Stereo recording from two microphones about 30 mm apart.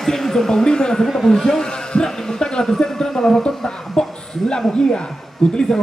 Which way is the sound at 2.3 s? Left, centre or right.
Left.